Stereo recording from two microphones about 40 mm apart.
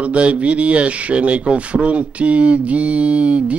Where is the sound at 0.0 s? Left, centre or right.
Right.